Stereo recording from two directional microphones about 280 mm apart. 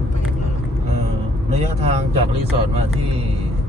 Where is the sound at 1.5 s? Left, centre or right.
Right.